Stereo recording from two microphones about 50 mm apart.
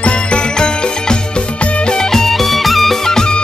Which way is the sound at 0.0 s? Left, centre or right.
Left.